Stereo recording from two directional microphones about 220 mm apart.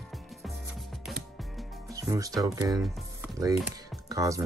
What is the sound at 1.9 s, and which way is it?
Music, 15° right (ahead or behind).